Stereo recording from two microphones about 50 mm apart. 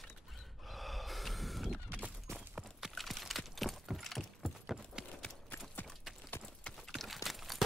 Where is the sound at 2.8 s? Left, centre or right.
Centre.